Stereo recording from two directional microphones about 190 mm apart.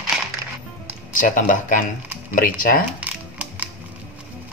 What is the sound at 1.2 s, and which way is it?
Speech, 45° left (ahead or behind).